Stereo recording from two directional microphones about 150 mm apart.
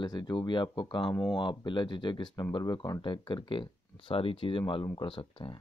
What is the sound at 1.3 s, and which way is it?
Speech, 30° left (ahead or behind).